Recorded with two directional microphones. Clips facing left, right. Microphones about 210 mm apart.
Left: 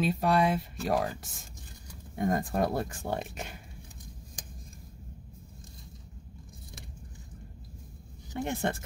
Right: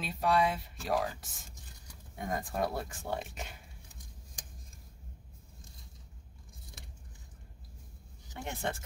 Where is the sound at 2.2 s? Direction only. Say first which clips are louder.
Left 6 dB; 50° left (ahead or behind).